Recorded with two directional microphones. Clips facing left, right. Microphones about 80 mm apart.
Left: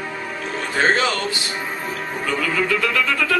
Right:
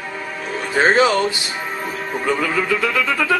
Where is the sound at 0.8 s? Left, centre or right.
Centre.